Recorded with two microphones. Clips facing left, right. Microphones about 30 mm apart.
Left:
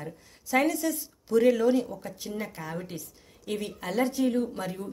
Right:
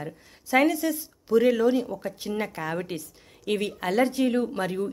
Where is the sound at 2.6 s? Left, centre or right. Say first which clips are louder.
Right 6 dB; right.